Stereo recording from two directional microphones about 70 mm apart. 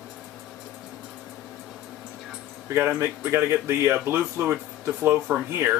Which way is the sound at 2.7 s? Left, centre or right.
Right.